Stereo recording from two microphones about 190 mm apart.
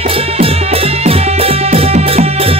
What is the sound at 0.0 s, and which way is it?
Music, 30° right (ahead or behind).